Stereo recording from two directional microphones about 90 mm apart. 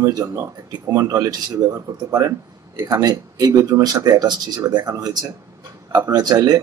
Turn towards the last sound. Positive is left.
turn(degrees=-45)  # may be behind; listen again after turning